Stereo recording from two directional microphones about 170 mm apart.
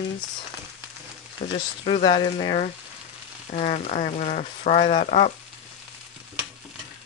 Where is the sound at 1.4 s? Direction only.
40° left (ahead or behind).